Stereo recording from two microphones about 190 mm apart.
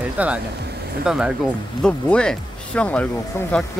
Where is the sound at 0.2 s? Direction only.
10° right (ahead or behind).